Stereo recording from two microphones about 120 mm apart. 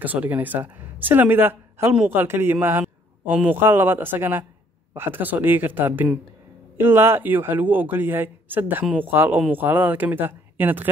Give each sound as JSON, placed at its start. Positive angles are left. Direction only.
{"t": 0.0, "sound": "speech", "side_deg": -15}